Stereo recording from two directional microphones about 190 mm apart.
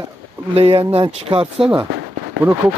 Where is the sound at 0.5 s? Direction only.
30° right (ahead or behind).